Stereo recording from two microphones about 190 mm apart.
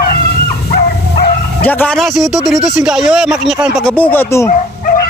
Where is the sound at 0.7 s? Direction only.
50° left (ahead or behind).